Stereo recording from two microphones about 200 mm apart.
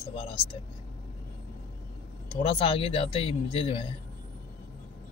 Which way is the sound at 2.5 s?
25° left (ahead or behind).